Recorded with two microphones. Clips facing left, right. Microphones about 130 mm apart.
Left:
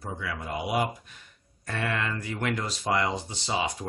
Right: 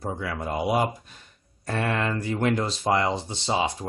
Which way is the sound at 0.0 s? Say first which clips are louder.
Right 5 dB; 40° right (ahead or behind).